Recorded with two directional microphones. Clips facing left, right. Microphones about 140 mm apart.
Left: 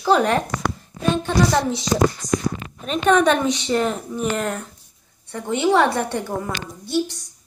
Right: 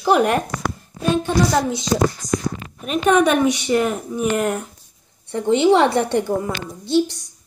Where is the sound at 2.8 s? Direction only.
10° right (ahead or behind).